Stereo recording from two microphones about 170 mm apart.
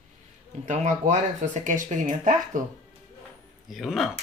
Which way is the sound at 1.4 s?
50° right (ahead or behind).